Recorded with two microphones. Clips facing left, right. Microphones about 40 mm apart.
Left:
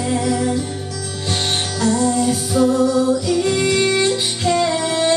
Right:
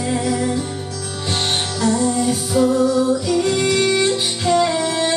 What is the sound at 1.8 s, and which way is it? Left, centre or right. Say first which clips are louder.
Music: left 1 dB; centre.